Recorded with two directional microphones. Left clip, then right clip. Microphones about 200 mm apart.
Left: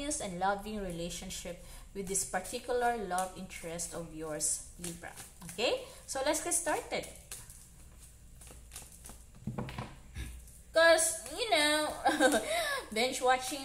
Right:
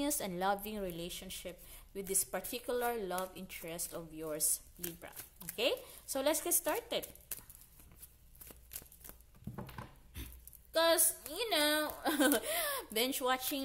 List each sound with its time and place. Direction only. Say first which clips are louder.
0.0 s a woman's voice: left 2 dB; 50° right (ahead or behind)
10.7 s a woman's voice: left 6 dB; 55° right (ahead or behind)